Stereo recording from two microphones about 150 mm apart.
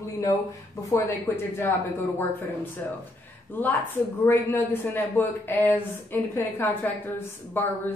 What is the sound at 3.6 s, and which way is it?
A woman's voice, 10° left (ahead or behind).